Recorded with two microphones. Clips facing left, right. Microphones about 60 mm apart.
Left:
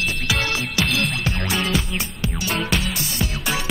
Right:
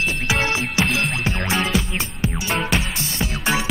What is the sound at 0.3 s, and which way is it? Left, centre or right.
Music, right.